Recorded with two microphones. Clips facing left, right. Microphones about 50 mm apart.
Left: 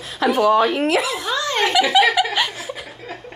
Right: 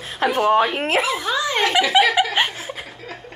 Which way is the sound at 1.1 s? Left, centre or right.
Centre.